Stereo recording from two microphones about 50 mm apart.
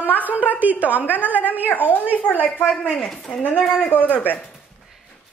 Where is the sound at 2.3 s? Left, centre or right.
Left.